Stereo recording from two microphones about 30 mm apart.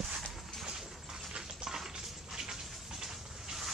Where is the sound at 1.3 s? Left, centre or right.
Right.